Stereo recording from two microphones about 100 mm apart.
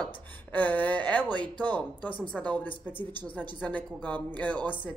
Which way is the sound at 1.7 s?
15° left (ahead or behind).